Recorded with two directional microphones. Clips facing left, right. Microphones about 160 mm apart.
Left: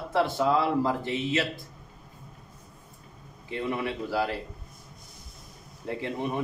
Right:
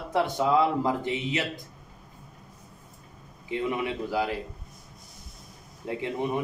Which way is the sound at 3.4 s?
15° right (ahead or behind).